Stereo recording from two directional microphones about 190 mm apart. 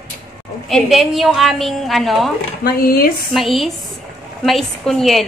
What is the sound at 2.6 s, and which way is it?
Speech, 50° left (ahead or behind).